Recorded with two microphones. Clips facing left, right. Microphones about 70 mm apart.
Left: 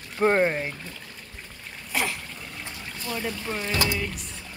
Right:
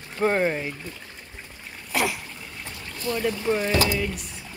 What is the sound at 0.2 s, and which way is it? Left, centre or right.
Speech, left.